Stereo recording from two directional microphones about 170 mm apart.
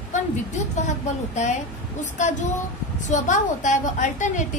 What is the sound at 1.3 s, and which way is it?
A woman's voice, 45° left (ahead or behind).